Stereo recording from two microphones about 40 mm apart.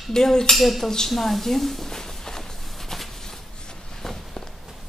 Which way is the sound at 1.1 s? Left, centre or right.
Centre.